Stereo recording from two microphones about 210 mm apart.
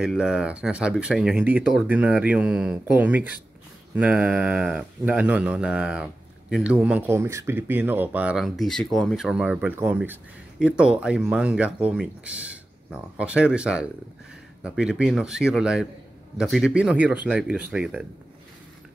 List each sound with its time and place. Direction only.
0.0 s speech: 5° right (ahead or behind)